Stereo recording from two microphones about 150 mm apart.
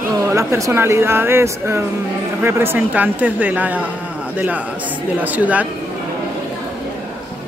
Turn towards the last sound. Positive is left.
turn(degrees=-10)  # may be behind; listen again after turning